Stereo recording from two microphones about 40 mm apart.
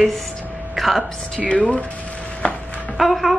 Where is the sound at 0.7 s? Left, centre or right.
Centre.